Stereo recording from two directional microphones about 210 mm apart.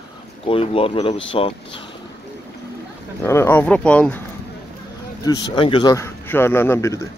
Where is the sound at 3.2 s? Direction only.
10° left (ahead or behind).